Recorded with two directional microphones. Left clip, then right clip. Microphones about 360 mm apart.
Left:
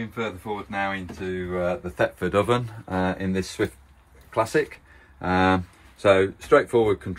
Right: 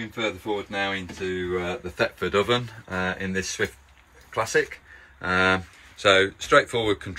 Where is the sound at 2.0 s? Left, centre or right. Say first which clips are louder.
Even; left.